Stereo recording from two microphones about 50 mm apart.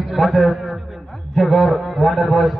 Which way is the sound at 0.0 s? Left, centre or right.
Centre.